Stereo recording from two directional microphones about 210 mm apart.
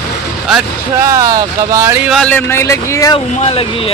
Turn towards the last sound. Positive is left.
turn(degrees=30)  # may be behind; listen again after turning